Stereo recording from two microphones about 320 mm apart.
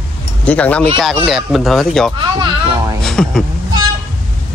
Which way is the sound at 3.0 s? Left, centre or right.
Centre.